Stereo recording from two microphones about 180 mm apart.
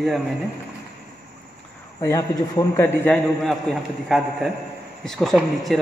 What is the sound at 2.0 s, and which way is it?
A man's voice, 15° left (ahead or behind).